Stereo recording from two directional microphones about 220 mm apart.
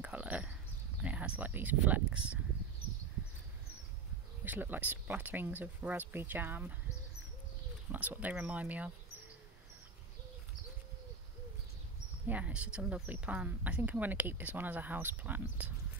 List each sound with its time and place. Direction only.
0.0 s a sound: 5° right (ahead or behind)
1.0 s speech: 5° right (ahead or behind)
4.5 s speech: 10° right (ahead or behind)
7.9 s speech: 10° right (ahead or behind)
12.3 s speech: 5° right (ahead or behind)